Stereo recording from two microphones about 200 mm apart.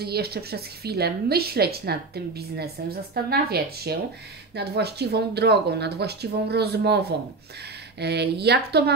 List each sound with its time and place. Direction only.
0.0 s a woman's voice: 50° right (ahead or behind)